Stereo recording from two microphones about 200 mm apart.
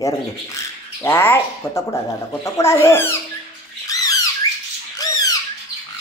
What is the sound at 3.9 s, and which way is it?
Squawk, 15° left (ahead or behind).